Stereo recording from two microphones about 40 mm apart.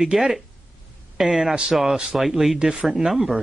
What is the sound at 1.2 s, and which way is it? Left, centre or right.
Speech, centre.